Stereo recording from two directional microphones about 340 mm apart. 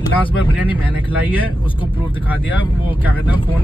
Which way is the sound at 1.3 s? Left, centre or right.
Centre.